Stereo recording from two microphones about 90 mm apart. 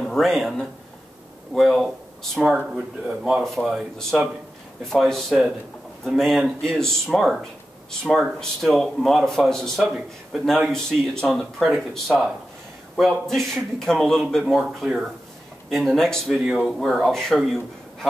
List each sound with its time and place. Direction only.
0.0 s speech: centre (ahead or behind)
3.4 s speech: centre (ahead or behind)
9.8 s speech: 10° right (ahead or behind)
10.7 s speech: 5° left (ahead or behind)
16.3 s speech: 10° right (ahead or behind)